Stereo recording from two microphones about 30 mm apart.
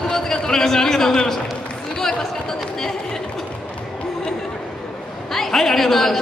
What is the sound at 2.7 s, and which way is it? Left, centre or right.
Chatter, centre.